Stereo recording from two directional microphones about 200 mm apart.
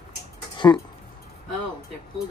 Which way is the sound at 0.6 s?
15° left (ahead or behind).